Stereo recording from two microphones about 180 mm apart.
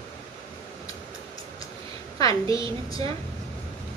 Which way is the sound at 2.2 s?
20° left (ahead or behind).